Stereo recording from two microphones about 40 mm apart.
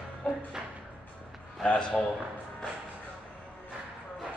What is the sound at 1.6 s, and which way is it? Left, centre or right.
Speech, left.